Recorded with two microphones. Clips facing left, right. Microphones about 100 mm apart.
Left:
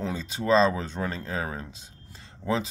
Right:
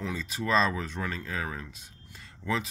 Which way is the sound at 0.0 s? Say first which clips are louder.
Left 3 dB; 30° left (ahead or behind).